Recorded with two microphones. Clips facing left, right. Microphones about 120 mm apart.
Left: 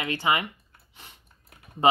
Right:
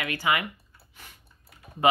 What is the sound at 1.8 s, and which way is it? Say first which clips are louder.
Speech: left 1 dB; 25° left (ahead or behind).